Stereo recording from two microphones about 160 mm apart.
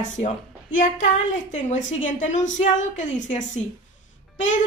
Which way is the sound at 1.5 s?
50° left (ahead or behind).